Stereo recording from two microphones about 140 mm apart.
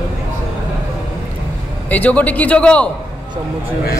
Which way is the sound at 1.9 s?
10° left (ahead or behind).